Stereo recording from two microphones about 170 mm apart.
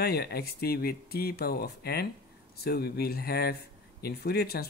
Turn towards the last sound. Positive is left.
turn(degrees=65)  # may be behind; listen again after turning